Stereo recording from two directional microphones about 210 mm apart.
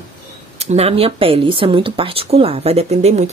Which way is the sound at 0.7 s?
30° right (ahead or behind).